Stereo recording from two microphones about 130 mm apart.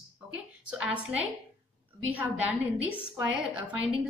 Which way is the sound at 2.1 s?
10° right (ahead or behind).